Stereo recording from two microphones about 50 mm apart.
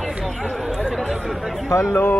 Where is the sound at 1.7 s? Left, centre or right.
Left.